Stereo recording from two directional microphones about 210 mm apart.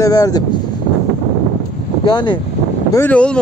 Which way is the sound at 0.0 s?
15° left (ahead or behind).